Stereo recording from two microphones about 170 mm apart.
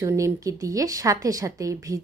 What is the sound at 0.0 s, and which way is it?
A woman's voice, 15° right (ahead or behind).